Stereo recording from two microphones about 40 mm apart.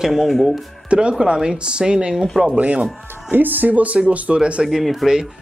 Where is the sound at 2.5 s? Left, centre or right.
Right.